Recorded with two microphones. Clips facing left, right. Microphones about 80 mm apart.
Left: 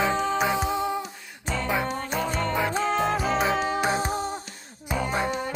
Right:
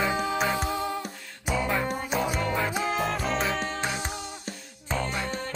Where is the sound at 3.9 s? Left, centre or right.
Left.